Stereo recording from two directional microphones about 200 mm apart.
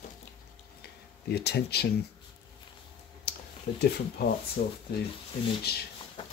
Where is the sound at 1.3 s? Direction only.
55° left (ahead or behind).